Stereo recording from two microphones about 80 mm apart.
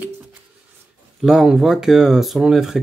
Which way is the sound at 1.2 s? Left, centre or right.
Centre.